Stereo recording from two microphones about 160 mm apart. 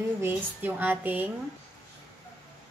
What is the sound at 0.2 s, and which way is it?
A woman's voice, 10° right (ahead or behind).